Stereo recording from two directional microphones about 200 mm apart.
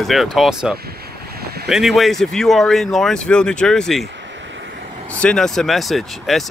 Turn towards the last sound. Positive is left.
turn(degrees=0)  # may be behind; listen again after turning